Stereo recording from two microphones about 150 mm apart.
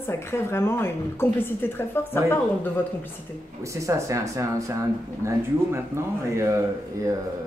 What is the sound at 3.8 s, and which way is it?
Speech, 20° right (ahead or behind).